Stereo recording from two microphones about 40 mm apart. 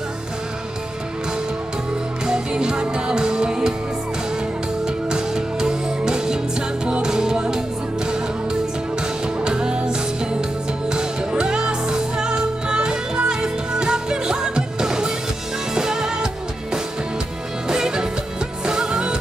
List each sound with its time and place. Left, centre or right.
2.2 s music: centre
4.8 s music: centre
9.4 s music: right
17.6 s music: centre